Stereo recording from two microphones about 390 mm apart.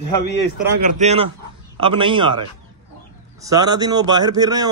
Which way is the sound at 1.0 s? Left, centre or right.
Centre.